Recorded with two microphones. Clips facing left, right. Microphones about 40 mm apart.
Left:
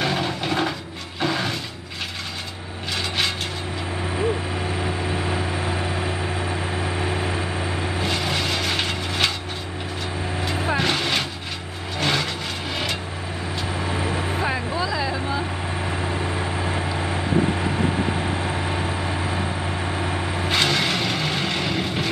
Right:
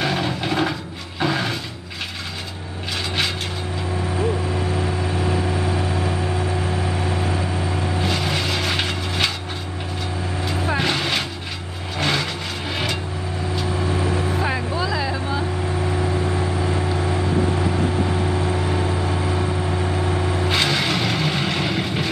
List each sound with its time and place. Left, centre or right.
0.0 s a sound: centre
1.2 s mechanisms: centre
4.7 s vehicle: centre
8.0 s vehicle: centre
10.7 s vehicle: centre
14.0 s vehicle: left
14.4 s vehicle: centre
16.0 s vehicle: centre
20.4 s vehicle: centre